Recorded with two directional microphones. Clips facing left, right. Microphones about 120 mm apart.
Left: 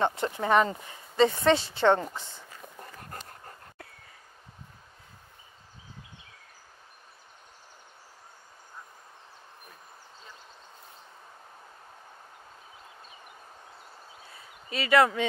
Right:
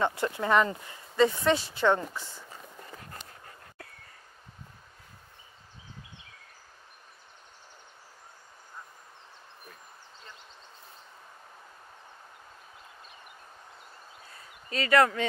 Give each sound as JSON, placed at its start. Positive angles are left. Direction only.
{"t": 0.0, "sound": "speech", "side_deg": 25}
{"t": 3.0, "sound": "dog", "side_deg": 50}
{"t": 14.7, "sound": "speech", "side_deg": 10}